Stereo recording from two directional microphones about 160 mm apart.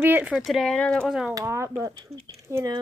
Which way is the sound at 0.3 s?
Centre (ahead or behind).